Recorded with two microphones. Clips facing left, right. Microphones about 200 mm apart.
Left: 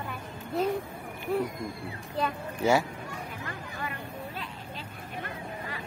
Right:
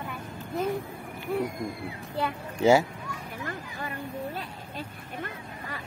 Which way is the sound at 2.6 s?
25° right (ahead or behind).